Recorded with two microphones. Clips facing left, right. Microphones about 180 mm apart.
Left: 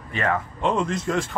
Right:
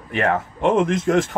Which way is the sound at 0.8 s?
70° right (ahead or behind).